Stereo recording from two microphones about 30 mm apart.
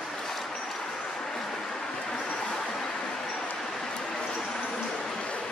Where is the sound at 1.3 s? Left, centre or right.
Centre.